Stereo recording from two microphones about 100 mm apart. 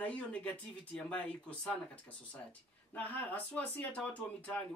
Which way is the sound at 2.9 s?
15° left (ahead or behind).